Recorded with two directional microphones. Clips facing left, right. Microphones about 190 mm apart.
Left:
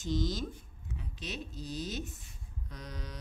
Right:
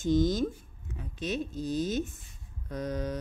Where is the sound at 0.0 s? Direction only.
50° right (ahead or behind).